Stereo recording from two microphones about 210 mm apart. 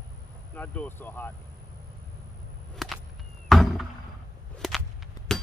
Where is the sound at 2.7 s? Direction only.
Centre (ahead or behind).